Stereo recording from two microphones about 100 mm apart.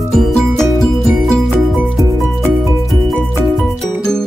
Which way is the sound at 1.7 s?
5° right (ahead or behind).